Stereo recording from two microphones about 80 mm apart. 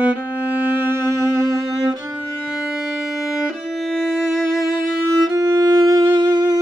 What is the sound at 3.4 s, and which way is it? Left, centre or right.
Music, centre.